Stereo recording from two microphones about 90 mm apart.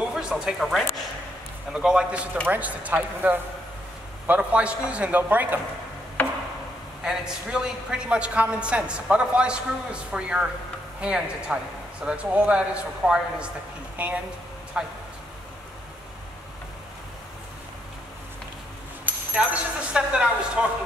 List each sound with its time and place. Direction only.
0.1 s a man's voice: 5° right (ahead or behind)
7.1 s a man's voice: 5° right (ahead or behind)
19.0 s a man's voice: 10° right (ahead or behind)